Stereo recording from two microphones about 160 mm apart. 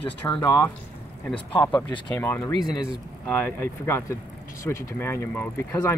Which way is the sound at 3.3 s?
15° left (ahead or behind).